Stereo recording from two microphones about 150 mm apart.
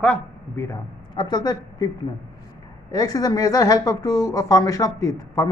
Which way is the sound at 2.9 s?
25° left (ahead or behind).